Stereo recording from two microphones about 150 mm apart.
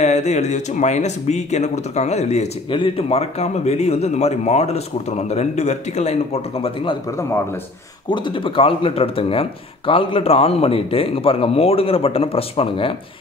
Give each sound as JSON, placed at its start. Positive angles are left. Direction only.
{"t": 0.0, "sound": "speech", "side_deg": 50}
{"t": 7.1, "sound": "speech", "side_deg": 20}
{"t": 8.1, "sound": "speech", "side_deg": 30}